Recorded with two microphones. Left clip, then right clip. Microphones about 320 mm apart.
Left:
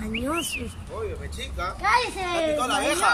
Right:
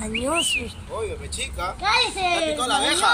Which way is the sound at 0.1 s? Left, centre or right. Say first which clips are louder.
Right 6 dB; centre.